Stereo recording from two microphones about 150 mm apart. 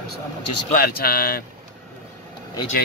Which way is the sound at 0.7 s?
85° left.